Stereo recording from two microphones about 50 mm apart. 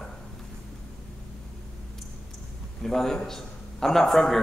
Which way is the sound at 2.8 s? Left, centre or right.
Centre.